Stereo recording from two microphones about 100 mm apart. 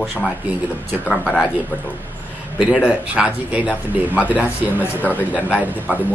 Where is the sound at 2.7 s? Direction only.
10° right (ahead or behind).